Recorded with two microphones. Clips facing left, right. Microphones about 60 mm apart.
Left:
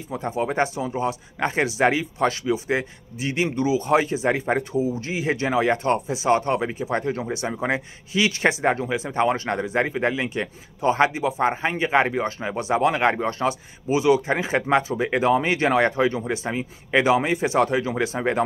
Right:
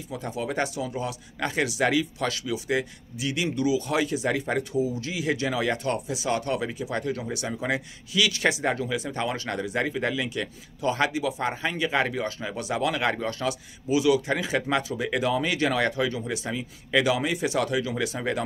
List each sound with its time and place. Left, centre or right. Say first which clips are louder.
0.1 s speech: left 5 dB; left